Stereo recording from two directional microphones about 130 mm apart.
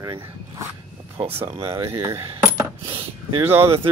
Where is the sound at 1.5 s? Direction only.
45° right (ahead or behind).